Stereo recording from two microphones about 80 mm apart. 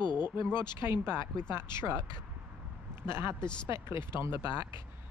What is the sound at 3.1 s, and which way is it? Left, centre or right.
Speech, right.